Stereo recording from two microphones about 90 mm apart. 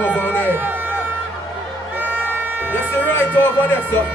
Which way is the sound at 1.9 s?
20° right (ahead or behind).